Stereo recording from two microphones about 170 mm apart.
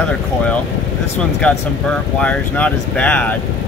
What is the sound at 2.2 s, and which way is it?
Speech, 10° left (ahead or behind).